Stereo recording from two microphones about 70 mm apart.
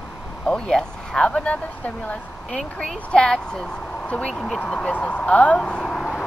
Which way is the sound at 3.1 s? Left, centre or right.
Centre.